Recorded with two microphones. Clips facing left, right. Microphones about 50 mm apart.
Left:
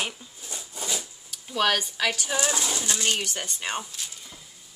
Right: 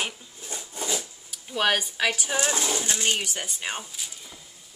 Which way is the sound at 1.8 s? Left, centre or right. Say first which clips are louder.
Right 1 dB; centre.